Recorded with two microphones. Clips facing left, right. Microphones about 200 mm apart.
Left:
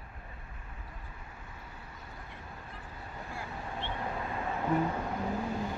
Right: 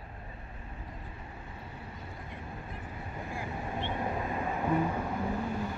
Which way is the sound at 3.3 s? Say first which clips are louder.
Right 4 dB; 15° right (ahead or behind).